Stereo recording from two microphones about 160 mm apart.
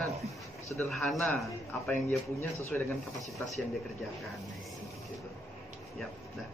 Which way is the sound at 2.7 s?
5° left (ahead or behind).